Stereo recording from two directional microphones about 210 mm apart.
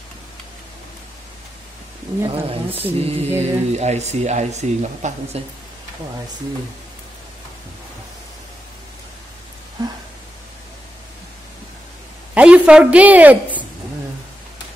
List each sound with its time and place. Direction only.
2.2 s speech: 25° right (ahead or behind)
9.8 s a sound: 20° right (ahead or behind)
12.4 s a woman's voice: 5° right (ahead or behind)